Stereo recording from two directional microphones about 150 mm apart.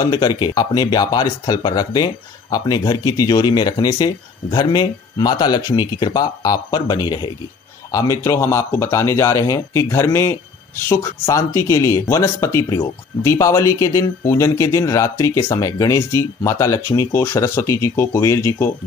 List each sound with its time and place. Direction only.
0.0 s speech: 25° left (ahead or behind)